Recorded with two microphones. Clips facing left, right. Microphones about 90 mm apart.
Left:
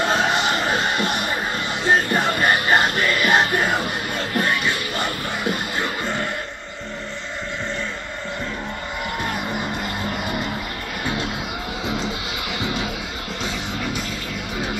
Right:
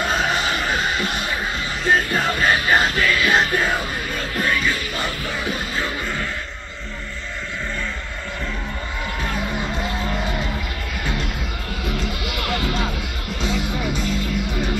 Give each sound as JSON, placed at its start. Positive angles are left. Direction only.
{"t": 0.1, "sound": "music", "side_deg": 25}
{"t": 10.1, "sound": "music", "side_deg": 5}
{"t": 11.8, "sound": "music", "side_deg": 20}